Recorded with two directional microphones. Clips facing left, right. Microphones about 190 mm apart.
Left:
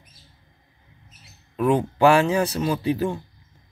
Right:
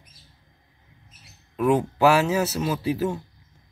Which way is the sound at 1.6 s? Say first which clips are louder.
Left 1 dB; 5° right (ahead or behind).